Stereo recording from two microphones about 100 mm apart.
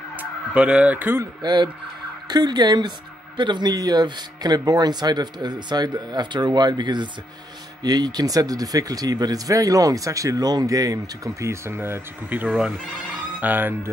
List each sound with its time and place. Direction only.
0.2 s speech: 10° right (ahead or behind)
1.4 s speech: 50° right (ahead or behind); by 13.7 s 20° right (ahead or behind)